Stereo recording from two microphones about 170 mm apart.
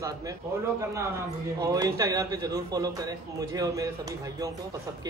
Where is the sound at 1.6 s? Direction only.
20° right (ahead or behind).